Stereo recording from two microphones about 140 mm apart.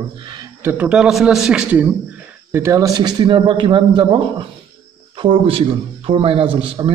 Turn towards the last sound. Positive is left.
turn(degrees=-40)  # may be behind; listen again after turning